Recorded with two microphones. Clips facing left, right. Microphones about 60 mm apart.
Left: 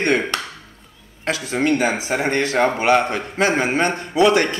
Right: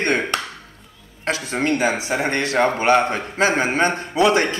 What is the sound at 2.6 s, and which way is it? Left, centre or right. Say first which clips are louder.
Speech: even; centre.